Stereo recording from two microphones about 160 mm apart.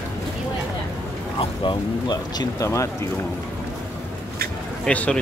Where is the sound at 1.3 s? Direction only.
30° left (ahead or behind).